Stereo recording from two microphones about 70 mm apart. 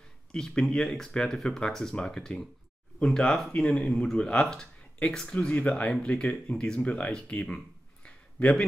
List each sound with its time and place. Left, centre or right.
0.3 s speech: centre